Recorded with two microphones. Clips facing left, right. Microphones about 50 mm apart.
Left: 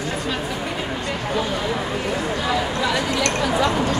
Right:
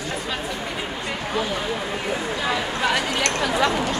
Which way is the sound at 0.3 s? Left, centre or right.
Centre.